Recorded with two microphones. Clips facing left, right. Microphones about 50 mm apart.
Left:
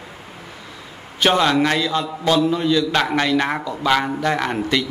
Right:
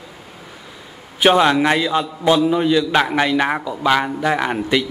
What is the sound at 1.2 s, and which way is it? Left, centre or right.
Speech, centre.